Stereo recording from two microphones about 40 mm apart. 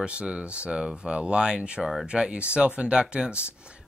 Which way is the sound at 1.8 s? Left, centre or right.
Centre.